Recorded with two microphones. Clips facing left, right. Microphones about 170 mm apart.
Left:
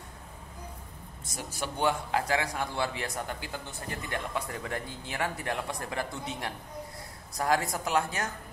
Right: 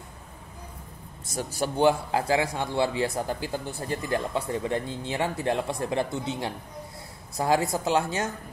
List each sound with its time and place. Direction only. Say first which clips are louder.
1.3 s a man's voice: right 8 dB; 30° right (ahead or behind)